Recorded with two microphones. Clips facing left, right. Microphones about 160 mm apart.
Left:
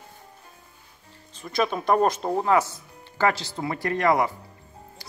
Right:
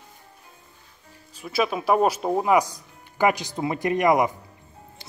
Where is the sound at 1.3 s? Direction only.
5° right (ahead or behind).